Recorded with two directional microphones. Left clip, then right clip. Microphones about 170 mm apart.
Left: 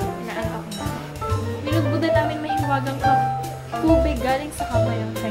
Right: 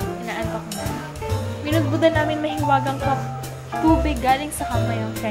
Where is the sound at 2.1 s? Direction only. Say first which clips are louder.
Left 1 dB; 40° right (ahead or behind).